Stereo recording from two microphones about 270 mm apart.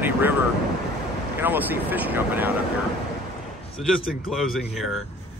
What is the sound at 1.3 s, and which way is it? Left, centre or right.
Speech, centre.